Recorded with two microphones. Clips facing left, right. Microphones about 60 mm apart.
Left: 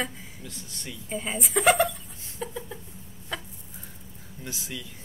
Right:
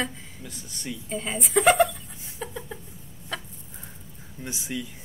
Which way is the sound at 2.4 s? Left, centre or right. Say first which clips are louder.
Even; centre.